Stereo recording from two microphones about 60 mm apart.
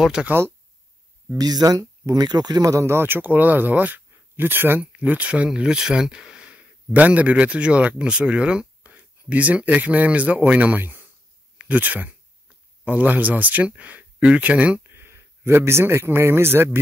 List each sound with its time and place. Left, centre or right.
0.0 s speech: centre
1.3 s speech: right
2.9 s speech: right
4.9 s speech: right
5.5 s speech: centre
14.8 s speech: right